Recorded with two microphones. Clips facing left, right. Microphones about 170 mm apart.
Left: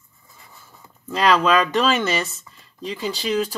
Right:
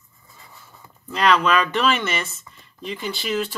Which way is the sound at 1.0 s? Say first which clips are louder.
Left 1 dB; 35° left (ahead or behind).